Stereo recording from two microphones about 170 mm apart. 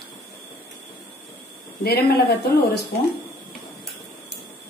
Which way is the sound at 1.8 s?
70° left (ahead or behind).